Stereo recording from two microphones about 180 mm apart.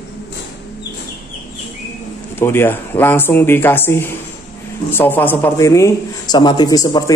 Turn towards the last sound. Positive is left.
turn(degrees=20)  # may be behind; listen again after turning